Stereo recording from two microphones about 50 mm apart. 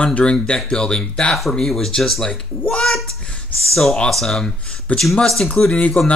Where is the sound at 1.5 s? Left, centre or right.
Centre.